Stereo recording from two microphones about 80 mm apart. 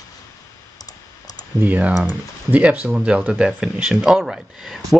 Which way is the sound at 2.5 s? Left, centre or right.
Centre.